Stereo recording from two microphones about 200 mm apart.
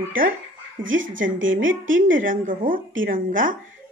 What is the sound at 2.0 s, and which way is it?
Speech, 40° right (ahead or behind).